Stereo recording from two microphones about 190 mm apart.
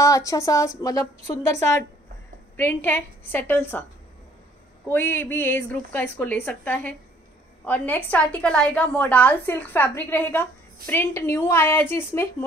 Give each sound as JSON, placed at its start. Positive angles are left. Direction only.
{"t": 0.0, "sound": "a woman's voice", "side_deg": 15}
{"t": 4.9, "sound": "a woman's voice", "side_deg": 10}